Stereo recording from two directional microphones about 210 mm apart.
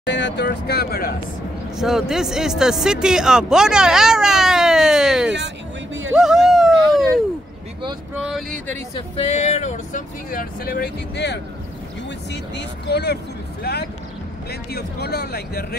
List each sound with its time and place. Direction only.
0.0 s speech: 55° left (ahead or behind)
1.8 s speech: centre (ahead or behind)
6.1 s a sound: centre (ahead or behind)
8.2 s speech: centre (ahead or behind)
9.1 s speech: 30° left (ahead or behind); by 15.6 s 50° left (ahead or behind)